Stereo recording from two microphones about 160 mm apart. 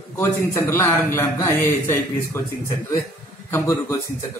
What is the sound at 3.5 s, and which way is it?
Speech, 15° left (ahead or behind).